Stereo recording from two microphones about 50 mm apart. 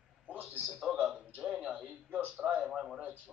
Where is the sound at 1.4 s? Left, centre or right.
Centre.